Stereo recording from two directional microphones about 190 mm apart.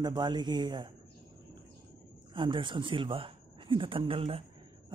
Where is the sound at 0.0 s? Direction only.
25° right (ahead or behind).